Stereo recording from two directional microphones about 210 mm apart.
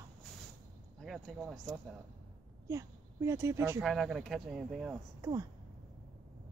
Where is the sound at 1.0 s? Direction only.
Centre (ahead or behind).